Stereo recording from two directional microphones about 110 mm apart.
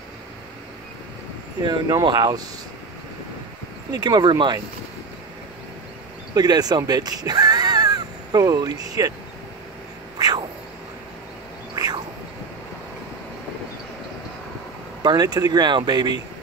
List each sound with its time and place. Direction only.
1.6 s speech: 40° right (ahead or behind)
3.9 s speech: 35° right (ahead or behind)
6.3 s speech: 35° right (ahead or behind)
10.1 s a sound: 35° right (ahead or behind)
11.7 s a sound: 30° right (ahead or behind)
15.0 s speech: 35° right (ahead or behind)